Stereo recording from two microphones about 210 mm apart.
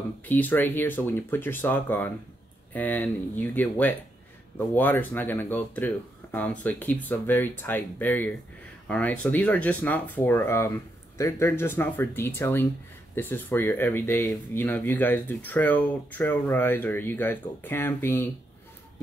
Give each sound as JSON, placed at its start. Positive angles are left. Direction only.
{"t": 0.3, "sound": "speech", "side_deg": 10}